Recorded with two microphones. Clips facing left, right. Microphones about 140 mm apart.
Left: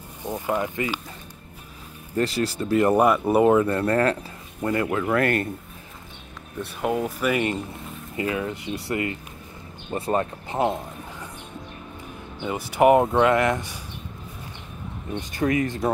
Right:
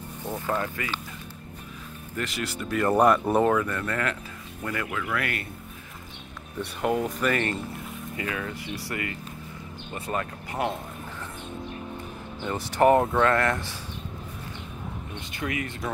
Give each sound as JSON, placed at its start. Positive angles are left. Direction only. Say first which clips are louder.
{"t": 0.2, "sound": "speech", "louder": "left 3 dB", "side_deg": 15}
{"t": 2.1, "sound": "speech", "louder": "left 8 dB", "side_deg": 35}
{"t": 2.9, "sound": "speech", "louder": "right 1 dB", "side_deg": 5}
{"t": 3.4, "sound": "speech", "louder": "left 6 dB", "side_deg": 30}
{"t": 6.6, "sound": "speech", "louder": "left 1 dB", "side_deg": 0}
{"t": 8.2, "sound": "speech", "louder": "left 7 dB", "side_deg": 25}
{"t": 12.4, "sound": "speech", "louder": "left 3 dB", "side_deg": 10}
{"t": 15.3, "sound": "speech", "louder": "left 9 dB", "side_deg": 35}